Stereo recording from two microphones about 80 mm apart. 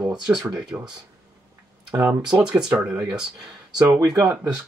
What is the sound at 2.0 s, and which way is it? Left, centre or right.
Speech, centre.